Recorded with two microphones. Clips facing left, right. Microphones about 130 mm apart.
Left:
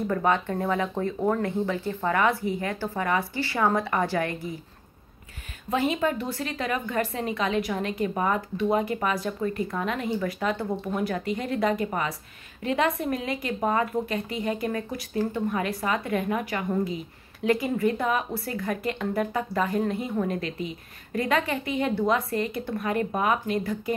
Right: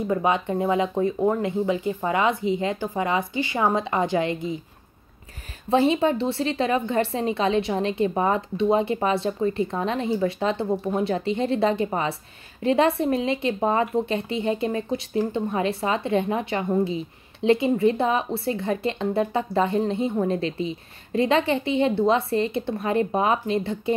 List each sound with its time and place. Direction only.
0.0 s a woman's voice: 15° right (ahead or behind)
5.7 s a woman's voice: 30° right (ahead or behind)